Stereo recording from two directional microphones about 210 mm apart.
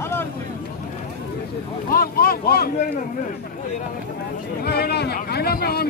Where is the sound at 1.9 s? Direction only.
45° left (ahead or behind).